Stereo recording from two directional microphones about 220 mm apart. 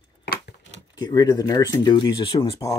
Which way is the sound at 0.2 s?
50° left (ahead or behind).